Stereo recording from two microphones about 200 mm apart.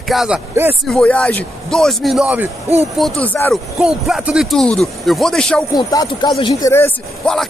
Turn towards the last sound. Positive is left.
turn(degrees=5)  # may be behind; listen again after turning